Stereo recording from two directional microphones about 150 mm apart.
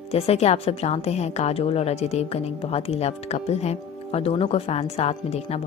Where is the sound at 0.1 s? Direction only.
45° left (ahead or behind).